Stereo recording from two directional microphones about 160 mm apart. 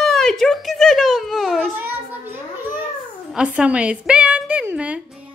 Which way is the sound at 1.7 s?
10° right (ahead or behind).